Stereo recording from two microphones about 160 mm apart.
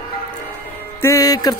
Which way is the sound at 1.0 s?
20° left (ahead or behind).